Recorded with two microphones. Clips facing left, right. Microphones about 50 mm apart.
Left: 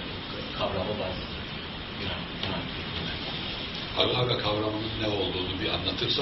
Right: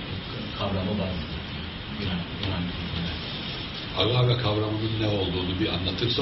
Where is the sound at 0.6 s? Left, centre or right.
Centre.